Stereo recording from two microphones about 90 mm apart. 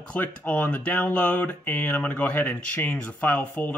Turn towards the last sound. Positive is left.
turn(degrees=15)  # may be behind; listen again after turning